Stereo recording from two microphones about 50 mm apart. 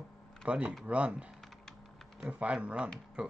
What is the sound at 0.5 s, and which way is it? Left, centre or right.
Music, right.